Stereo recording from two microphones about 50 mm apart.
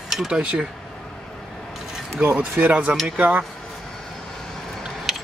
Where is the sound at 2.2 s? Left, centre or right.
Right.